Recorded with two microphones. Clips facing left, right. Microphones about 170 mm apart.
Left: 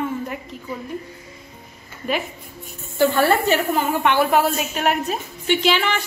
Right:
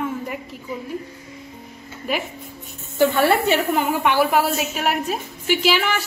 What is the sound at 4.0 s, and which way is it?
A woman's voice, 5° right (ahead or behind).